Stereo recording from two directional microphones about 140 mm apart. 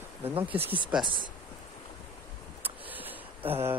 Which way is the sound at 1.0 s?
35° left (ahead or behind).